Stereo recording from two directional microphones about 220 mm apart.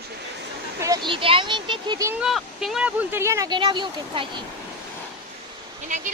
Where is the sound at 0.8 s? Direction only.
20° right (ahead or behind).